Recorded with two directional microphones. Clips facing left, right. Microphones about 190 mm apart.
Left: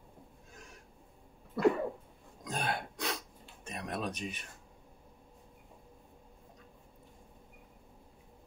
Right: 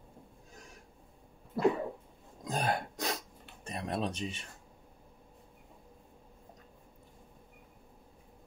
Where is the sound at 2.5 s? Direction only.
40° right (ahead or behind).